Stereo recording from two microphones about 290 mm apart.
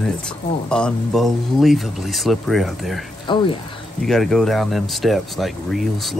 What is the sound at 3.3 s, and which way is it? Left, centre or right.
Speech, centre.